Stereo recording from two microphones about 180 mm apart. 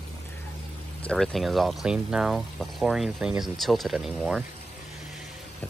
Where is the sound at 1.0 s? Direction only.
Centre (ahead or behind).